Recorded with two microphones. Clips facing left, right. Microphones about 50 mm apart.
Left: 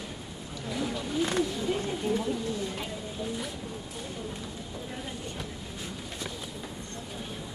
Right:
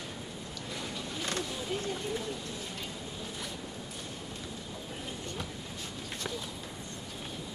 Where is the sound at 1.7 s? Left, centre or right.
Left.